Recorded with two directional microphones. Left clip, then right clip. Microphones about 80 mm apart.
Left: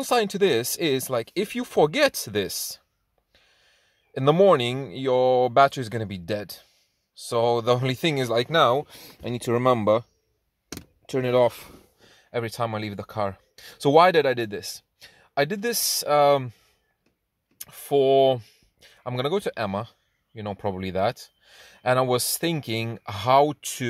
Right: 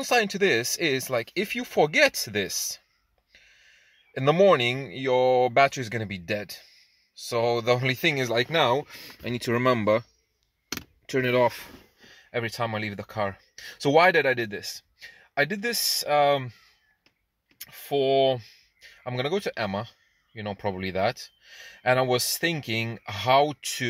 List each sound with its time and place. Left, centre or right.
0.0 s speech: left
8.5 s speech: left
11.1 s speech: centre
11.6 s speech: left
17.6 s clicking: left
19.0 s speech: left